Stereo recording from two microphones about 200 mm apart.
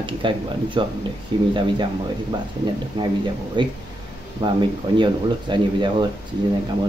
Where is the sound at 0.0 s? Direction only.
25° right (ahead or behind).